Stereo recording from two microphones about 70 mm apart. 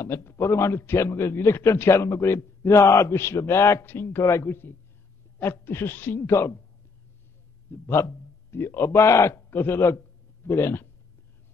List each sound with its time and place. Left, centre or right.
0.0 s a man's voice: left
7.7 s a man's voice: left